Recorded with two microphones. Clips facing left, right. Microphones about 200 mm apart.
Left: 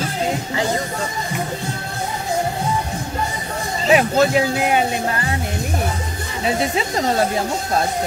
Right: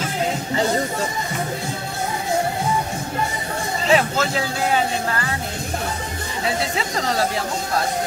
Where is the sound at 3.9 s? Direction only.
15° left (ahead or behind).